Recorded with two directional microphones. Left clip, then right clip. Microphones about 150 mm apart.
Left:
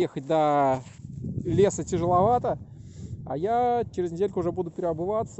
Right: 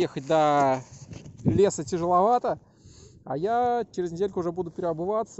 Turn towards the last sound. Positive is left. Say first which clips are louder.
# even
turn(degrees=10)  # may be behind; listen again after turning